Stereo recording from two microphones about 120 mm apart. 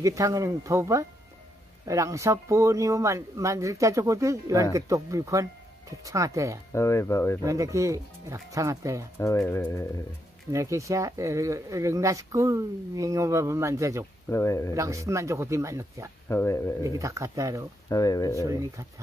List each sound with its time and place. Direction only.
0.0 s speech: 25° right (ahead or behind)
6.7 s speech: 25° left (ahead or behind)
7.4 s speech: 25° right (ahead or behind)
10.5 s speech: 25° right (ahead or behind)
14.3 s speech: 25° left (ahead or behind)
14.7 s speech: 25° right (ahead or behind)
16.3 s speech: 20° left (ahead or behind)
16.8 s speech: 25° right (ahead or behind)
17.8 s speech: 30° left (ahead or behind)
18.4 s speech: 25° right (ahead or behind)